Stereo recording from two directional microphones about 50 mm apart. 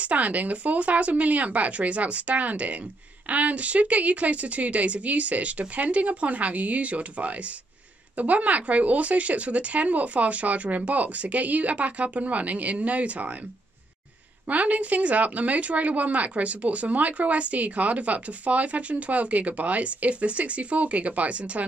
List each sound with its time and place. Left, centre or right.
0.0 s speech: right
14.5 s speech: right